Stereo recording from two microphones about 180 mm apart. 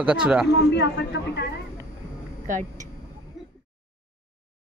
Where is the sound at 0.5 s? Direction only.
70° left (ahead or behind).